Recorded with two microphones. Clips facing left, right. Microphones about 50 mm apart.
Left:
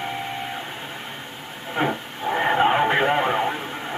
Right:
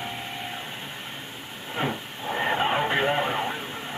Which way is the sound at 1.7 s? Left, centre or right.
Left.